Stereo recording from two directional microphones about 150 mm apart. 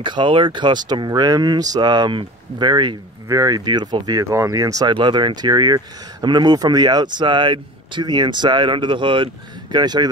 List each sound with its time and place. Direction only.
0.0 s speech: 35° right (ahead or behind)